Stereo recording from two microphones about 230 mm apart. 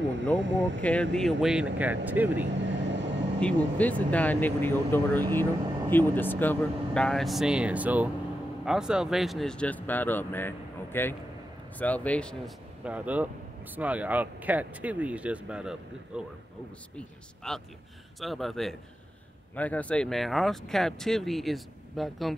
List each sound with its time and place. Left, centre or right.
0.4 s speech: right
1.1 s speech: centre
2.4 s vehicle: right
3.3 s speech: centre